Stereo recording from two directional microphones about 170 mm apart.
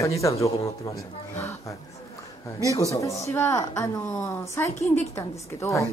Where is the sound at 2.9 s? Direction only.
20° left (ahead or behind).